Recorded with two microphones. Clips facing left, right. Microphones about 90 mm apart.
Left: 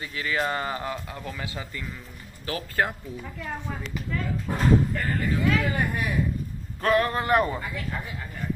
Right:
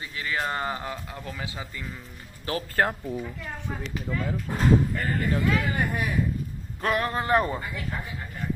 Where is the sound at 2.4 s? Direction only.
35° right (ahead or behind).